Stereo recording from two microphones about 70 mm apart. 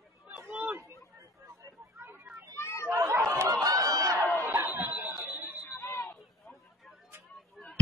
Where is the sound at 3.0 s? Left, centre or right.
Right.